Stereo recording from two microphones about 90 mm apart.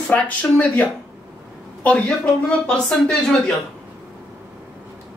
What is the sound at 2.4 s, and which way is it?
Speech, 10° left (ahead or behind).